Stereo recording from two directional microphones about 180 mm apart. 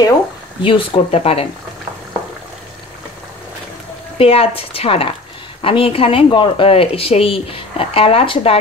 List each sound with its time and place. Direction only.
0.6 s speech: 30° left (ahead or behind)
4.2 s speech: 35° left (ahead or behind)